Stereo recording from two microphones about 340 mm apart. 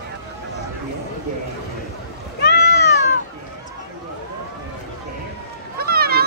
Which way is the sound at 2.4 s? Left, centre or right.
Left.